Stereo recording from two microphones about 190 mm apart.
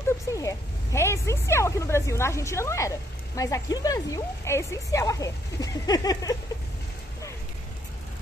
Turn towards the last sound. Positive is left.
turn(degrees=20)  # may be behind; listen again after turning